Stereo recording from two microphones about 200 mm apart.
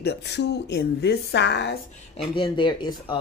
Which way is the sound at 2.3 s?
25° left (ahead or behind).